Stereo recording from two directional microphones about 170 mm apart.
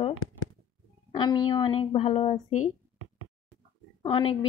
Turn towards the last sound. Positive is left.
turn(degrees=30)  # may be behind; listen again after turning